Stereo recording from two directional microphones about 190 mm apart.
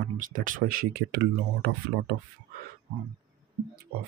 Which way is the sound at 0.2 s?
45° right (ahead or behind).